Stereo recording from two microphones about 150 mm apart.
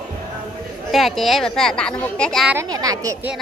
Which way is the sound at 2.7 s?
25° right (ahead or behind).